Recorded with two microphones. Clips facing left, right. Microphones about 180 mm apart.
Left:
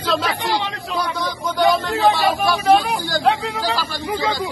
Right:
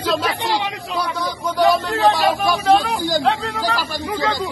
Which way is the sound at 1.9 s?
10° left (ahead or behind).